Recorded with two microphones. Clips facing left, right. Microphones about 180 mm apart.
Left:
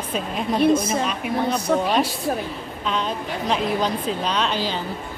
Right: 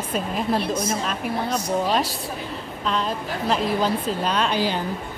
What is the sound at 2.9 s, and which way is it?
A woman's voice, centre (ahead or behind).